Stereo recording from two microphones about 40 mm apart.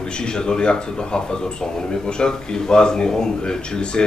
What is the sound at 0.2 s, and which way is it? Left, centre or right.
Speech, left.